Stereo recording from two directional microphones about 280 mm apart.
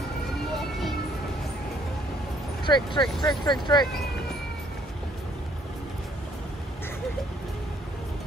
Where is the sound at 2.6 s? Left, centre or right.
Centre.